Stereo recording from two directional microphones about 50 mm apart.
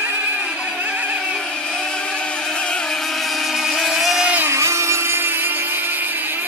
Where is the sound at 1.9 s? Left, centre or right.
Left; by 4.2 s centre.